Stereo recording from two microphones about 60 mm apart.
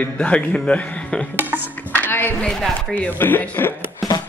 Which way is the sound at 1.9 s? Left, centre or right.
Left.